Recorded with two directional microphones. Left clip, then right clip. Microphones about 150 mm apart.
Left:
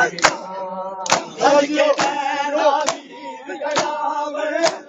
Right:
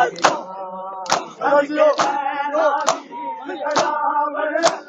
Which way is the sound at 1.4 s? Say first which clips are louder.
Even; 70° left (ahead or behind).